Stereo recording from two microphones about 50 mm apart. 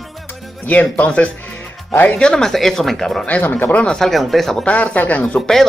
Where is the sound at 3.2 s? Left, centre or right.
Left.